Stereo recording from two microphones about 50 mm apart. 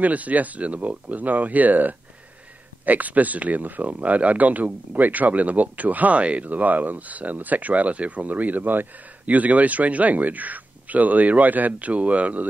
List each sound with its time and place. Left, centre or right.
0.0 s speech: right